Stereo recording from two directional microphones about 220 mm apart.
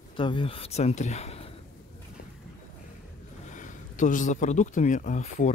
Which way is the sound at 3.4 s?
35° left (ahead or behind).